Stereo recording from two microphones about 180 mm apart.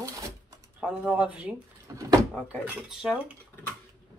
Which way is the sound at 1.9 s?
20° right (ahead or behind).